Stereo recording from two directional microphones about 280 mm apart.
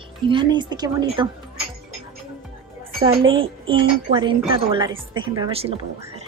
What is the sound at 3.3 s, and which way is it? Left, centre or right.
Speech, centre.